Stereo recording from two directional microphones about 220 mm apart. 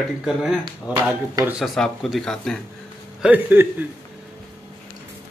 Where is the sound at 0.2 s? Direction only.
Centre (ahead or behind).